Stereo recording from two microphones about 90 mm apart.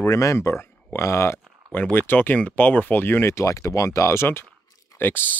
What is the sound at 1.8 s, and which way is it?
Speech, 20° left (ahead or behind).